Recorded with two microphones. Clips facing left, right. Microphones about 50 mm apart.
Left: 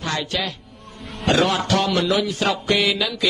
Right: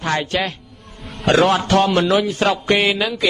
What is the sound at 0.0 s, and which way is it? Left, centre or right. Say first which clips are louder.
A man's voice: right 5 dB; right.